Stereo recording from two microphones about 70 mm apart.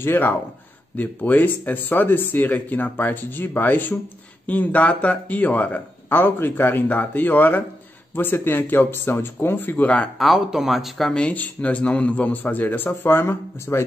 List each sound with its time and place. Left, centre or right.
0.0 s speech: left
10.1 s speech: centre
11.1 s speech: centre; by 13.8 s left